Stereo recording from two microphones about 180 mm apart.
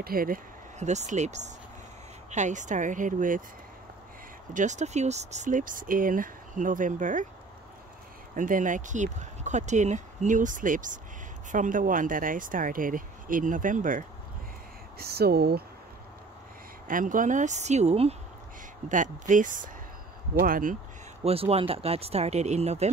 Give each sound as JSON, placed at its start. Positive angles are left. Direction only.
{"t": 0.0, "sound": "speech", "side_deg": -55}
{"t": 4.6, "sound": "speech", "side_deg": -40}
{"t": 8.4, "sound": "speech", "side_deg": -45}
{"t": 15.0, "sound": "speech", "side_deg": -60}
{"t": 16.8, "sound": "speech", "side_deg": -50}
{"t": 21.2, "sound": "speech", "side_deg": -35}